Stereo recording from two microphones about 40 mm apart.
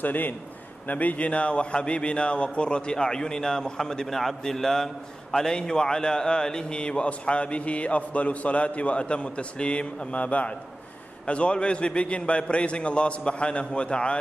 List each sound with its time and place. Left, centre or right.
0.0 s a man's voice: left